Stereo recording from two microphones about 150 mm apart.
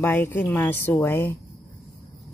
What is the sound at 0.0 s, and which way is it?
A woman's voice, 15° left (ahead or behind).